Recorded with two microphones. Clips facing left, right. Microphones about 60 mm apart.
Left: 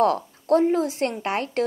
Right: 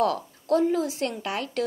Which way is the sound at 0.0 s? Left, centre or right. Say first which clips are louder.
Left 4 dB; left.